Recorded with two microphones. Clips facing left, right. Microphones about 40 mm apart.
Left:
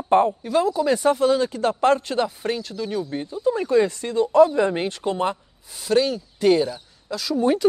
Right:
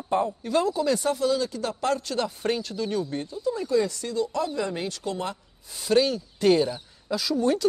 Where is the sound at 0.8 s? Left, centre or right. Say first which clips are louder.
Left 5 dB; left.